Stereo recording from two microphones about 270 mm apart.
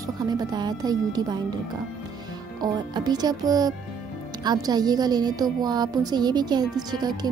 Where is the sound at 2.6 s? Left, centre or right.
Centre.